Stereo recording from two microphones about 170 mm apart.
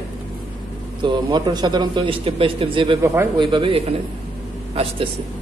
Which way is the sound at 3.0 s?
15° right (ahead or behind).